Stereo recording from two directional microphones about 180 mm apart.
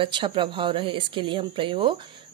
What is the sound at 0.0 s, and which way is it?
Speech, 25° right (ahead or behind).